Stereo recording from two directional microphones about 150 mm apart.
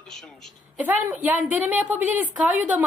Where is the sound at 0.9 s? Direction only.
10° right (ahead or behind).